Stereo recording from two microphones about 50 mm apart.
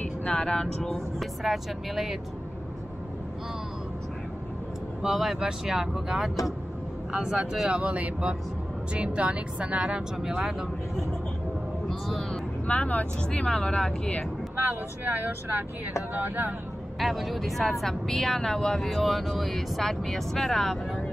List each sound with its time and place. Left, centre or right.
0.0 s vehicle: left
0.9 s speech: centre
5.0 s speech: centre
7.8 s speech: right
10.3 s speech: centre
11.9 s speech: centre
12.6 s speech: left
14.7 s speech: right
17.0 s speech: centre
18.9 s speech: centre